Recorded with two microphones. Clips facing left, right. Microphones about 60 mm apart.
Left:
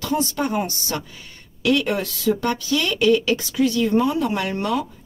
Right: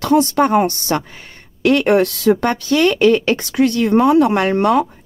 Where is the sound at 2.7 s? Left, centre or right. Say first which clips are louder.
Right 6 dB; right.